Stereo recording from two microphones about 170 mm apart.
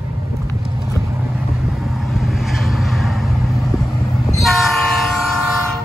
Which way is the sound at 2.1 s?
Centre (ahead or behind).